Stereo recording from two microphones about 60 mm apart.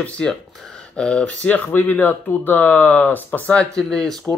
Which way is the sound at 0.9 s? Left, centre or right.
Centre.